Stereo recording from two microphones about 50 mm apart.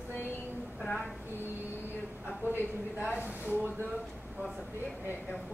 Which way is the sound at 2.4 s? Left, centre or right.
Right.